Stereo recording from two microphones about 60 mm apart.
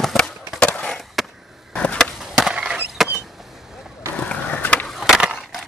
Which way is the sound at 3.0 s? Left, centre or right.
Centre.